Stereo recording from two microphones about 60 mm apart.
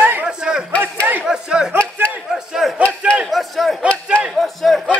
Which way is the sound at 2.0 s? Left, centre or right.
Right.